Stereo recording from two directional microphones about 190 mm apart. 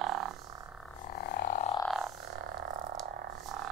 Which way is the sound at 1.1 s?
40° left (ahead or behind).